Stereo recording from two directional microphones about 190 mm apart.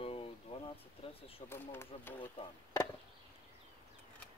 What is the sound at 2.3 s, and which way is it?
Speech, 20° left (ahead or behind).